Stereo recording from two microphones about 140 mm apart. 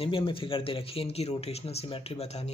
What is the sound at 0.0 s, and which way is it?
Speech, 40° left (ahead or behind).